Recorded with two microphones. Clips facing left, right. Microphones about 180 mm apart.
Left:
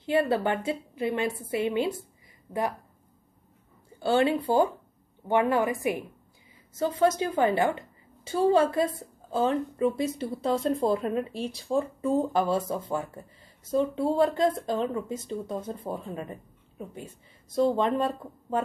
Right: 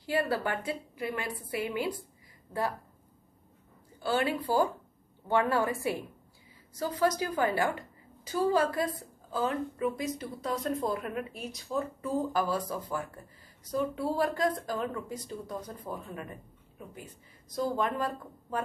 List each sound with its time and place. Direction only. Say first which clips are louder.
0.0 s a woman's voice: left 5 dB; 25° left (ahead or behind)
4.0 s a woman's voice: left 6 dB; 25° left (ahead or behind)